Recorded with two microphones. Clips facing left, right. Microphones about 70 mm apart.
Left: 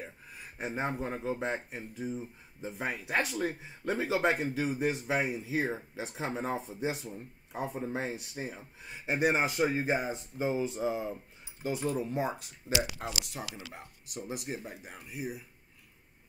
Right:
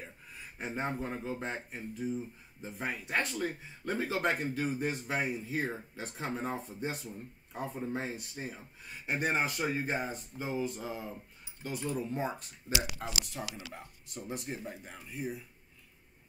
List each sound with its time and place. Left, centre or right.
0.6 s speech: centre